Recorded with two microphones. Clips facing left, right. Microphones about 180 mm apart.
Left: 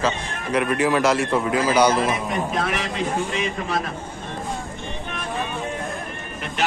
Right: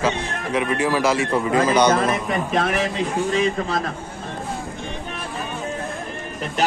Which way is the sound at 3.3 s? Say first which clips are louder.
Right 5 dB; 35° right (ahead or behind).